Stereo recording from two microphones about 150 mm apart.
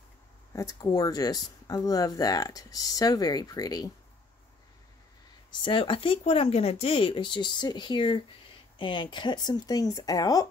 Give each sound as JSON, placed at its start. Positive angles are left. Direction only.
{"t": 0.5, "sound": "speech", "side_deg": 20}
{"t": 5.6, "sound": "speech", "side_deg": 35}